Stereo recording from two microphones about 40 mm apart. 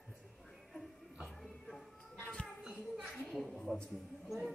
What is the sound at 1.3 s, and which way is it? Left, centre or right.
Music, centre.